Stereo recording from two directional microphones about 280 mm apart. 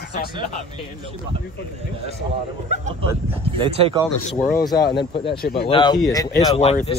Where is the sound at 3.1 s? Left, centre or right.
Centre.